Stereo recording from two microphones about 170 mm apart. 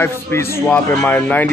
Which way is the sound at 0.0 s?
15° left (ahead or behind).